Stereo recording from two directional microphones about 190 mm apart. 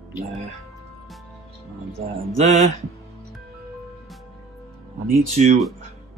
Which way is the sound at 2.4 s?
35° right (ahead or behind).